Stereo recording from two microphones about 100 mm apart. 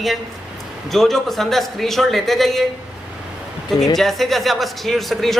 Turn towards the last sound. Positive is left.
turn(degrees=0)  # may be behind; listen again after turning